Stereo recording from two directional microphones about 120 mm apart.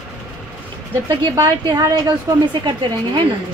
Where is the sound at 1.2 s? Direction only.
35° right (ahead or behind).